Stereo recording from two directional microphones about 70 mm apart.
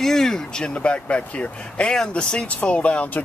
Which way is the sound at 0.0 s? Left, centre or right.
Centre.